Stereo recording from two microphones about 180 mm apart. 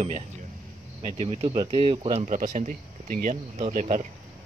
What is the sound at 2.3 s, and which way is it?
Speech, 45° right (ahead or behind).